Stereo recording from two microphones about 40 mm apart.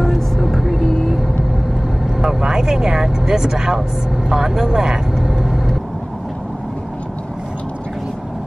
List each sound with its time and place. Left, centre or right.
0.0 s music: centre
0.8 s vehicle: centre
2.2 s speech: centre
4.3 s vehicle: centre